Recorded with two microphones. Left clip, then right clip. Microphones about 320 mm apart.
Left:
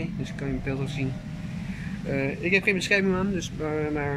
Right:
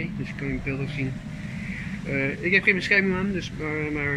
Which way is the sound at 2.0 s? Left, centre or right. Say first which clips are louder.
Right 1 dB; centre.